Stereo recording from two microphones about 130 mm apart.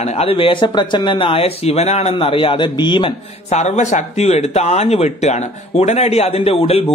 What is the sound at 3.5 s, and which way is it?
Speech, 60° left (ahead or behind).